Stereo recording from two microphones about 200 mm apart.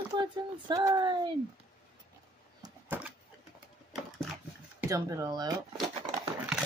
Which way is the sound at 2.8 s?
10° right (ahead or behind).